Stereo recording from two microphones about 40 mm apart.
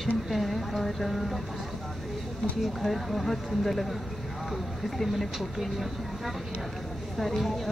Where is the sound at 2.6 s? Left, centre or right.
Centre.